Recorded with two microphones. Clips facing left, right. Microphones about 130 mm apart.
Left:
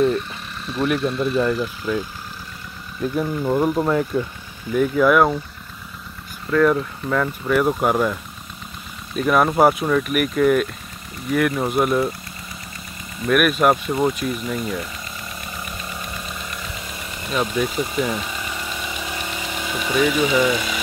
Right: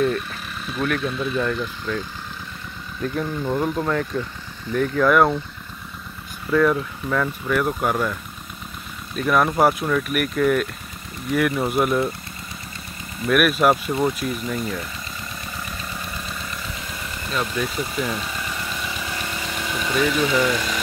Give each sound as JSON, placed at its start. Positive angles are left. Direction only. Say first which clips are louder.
{"t": 0.7, "sound": "speech", "louder": "left 3 dB", "side_deg": 0}
{"t": 6.5, "sound": "speech", "louder": "left 2 dB", "side_deg": 0}
{"t": 13.2, "sound": "speech", "louder": "left 1 dB", "side_deg": 0}
{"t": 17.2, "sound": "engine", "louder": "left 4 dB", "side_deg": 15}